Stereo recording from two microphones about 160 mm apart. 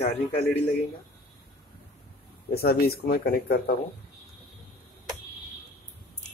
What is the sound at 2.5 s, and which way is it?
Speech, 75° left (ahead or behind).